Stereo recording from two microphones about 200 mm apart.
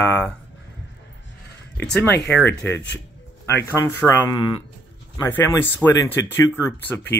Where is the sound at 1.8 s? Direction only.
10° left (ahead or behind).